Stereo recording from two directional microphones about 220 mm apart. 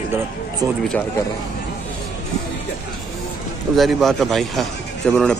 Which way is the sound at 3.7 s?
Centre (ahead or behind).